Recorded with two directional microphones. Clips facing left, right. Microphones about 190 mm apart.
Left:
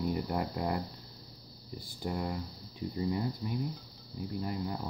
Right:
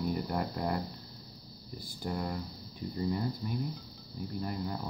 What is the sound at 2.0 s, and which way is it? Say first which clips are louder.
Speech: even; 15° left (ahead or behind).